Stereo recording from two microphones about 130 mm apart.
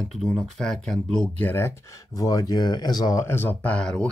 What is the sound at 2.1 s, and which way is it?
Speech, 30° left (ahead or behind).